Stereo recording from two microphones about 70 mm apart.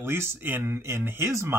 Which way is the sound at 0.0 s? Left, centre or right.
Right.